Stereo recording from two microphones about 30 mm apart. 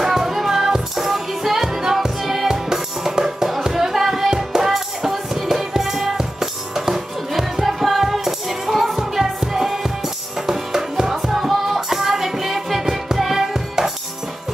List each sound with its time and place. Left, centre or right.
0.0 s music: centre
2.4 s music: centre
8.6 s music: centre
8.9 s music: centre